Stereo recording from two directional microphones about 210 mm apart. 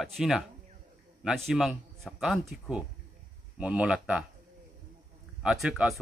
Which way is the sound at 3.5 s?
5° right (ahead or behind).